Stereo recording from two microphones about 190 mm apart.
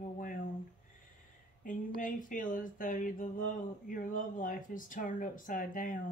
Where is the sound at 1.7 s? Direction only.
45° left (ahead or behind).